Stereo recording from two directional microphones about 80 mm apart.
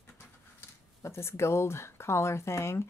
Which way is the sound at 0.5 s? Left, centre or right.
Left.